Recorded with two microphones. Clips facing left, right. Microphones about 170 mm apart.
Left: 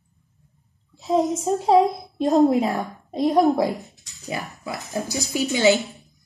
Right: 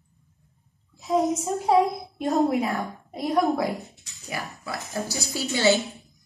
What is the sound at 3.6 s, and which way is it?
Speech, centre (ahead or behind).